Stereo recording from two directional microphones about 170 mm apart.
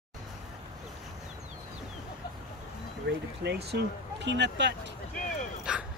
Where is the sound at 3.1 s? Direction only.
75° right (ahead or behind).